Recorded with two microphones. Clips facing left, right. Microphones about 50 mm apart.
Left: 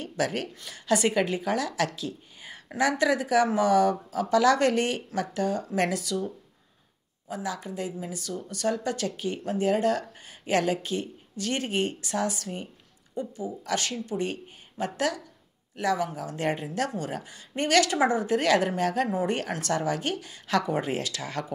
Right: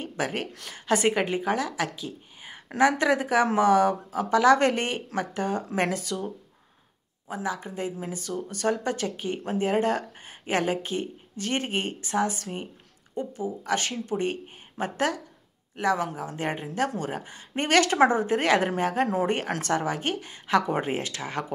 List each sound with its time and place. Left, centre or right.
0.0 s speech: right
7.2 s speech: right
16.3 s speech: centre